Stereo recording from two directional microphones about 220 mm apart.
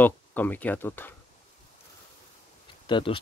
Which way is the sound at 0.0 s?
10° left (ahead or behind).